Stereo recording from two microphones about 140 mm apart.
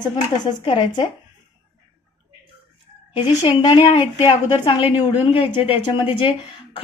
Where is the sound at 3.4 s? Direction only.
35° left (ahead or behind).